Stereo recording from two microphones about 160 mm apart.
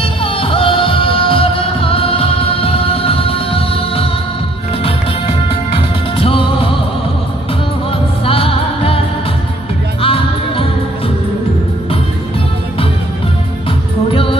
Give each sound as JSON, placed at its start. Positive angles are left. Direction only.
{"t": 0.0, "sound": "music", "side_deg": 35}
{"t": 5.5, "sound": "music", "side_deg": 35}
{"t": 8.3, "sound": "music", "side_deg": 35}
{"t": 10.0, "sound": "music", "side_deg": 35}